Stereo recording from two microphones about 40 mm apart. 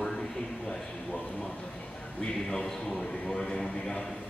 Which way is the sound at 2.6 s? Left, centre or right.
Centre.